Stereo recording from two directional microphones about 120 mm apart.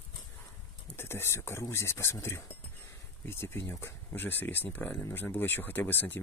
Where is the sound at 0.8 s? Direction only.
20° left (ahead or behind).